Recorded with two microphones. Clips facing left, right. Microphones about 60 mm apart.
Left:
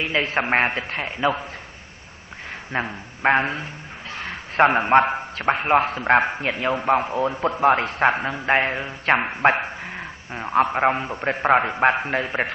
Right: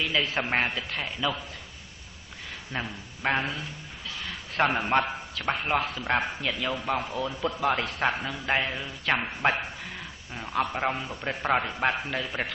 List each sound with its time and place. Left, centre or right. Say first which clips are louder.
0.0 s a man's voice: left 5 dB; left
2.7 s a man's voice: left 8 dB; left